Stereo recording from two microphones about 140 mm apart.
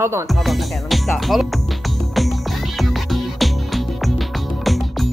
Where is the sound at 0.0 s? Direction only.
20° right (ahead or behind).